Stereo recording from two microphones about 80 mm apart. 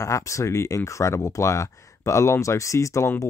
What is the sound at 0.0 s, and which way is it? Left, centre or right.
Speech, left.